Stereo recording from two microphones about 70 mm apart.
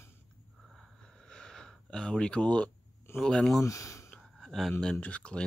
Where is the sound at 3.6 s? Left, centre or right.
Left.